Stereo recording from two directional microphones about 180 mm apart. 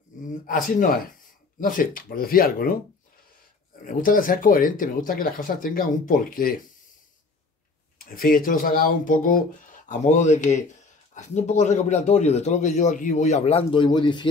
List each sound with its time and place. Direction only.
0.2 s a sound: 45° left (ahead or behind)
1.6 s speech: 50° left (ahead or behind)
3.8 s speech: 50° left (ahead or behind)
8.0 s a man's voice: 55° left (ahead or behind); by 14.2 s 25° left (ahead or behind)